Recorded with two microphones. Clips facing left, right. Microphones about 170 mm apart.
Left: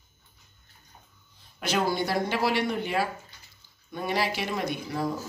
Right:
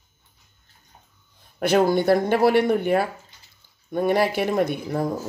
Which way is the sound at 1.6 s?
55° right (ahead or behind).